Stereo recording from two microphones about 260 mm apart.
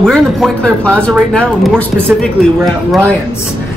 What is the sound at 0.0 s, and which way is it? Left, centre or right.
Speech, centre.